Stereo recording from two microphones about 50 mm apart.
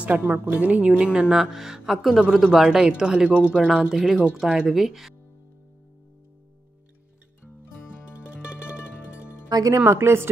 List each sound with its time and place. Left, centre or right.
0.0 s speech: right
3.9 s speech: centre
4.6 s speech: centre
9.8 s a woman's voice: right